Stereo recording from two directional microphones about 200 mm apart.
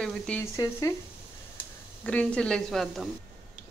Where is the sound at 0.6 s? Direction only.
15° left (ahead or behind).